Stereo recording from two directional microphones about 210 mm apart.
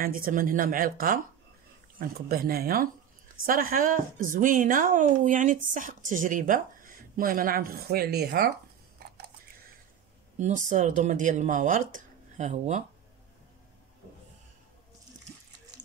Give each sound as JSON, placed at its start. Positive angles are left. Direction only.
{"t": 0.0, "sound": "speech", "side_deg": -45}
{"t": 10.4, "sound": "speech", "side_deg": -35}